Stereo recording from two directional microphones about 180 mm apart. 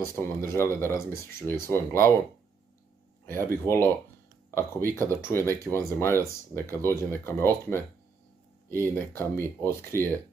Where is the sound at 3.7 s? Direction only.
15° left (ahead or behind).